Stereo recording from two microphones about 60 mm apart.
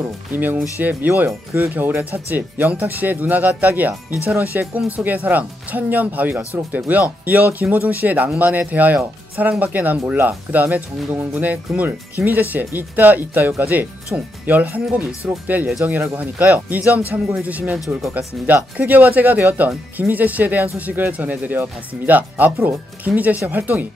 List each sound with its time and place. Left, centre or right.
0.0 s speech: right
17.7 s speech: centre
18.1 s speech: right